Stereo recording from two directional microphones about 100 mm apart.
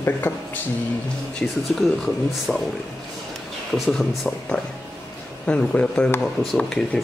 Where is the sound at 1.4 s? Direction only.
Centre (ahead or behind).